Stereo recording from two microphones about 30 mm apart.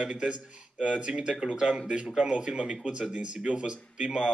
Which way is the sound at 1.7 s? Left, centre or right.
Right.